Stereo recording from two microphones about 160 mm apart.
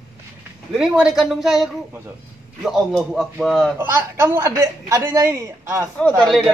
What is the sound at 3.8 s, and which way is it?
A man's voice, 15° right (ahead or behind).